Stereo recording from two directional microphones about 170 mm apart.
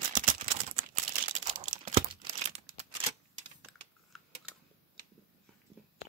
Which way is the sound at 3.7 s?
Centre (ahead or behind).